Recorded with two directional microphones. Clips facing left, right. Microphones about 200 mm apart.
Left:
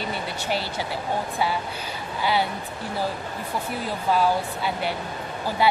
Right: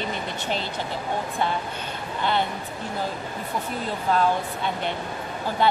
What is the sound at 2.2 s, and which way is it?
Speech, 10° left (ahead or behind).